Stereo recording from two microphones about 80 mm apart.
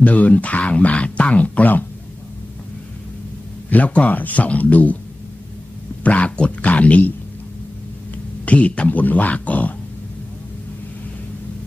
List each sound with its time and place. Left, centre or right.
0.0 s speech: centre
3.7 s speech: centre
6.0 s speech: centre
8.5 s speech: centre